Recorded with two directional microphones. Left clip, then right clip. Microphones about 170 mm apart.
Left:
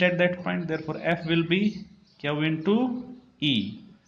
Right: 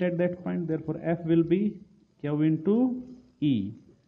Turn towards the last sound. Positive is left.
turn(degrees=-45)  # may be behind; listen again after turning